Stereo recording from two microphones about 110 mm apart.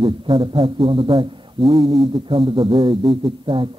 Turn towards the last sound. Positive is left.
turn(degrees=-50)  # may be behind; listen again after turning